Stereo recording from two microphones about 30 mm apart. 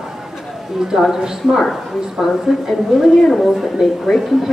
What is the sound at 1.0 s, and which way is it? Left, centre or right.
A woman's voice, centre.